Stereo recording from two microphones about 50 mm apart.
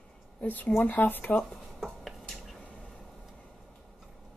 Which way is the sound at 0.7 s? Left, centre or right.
Left.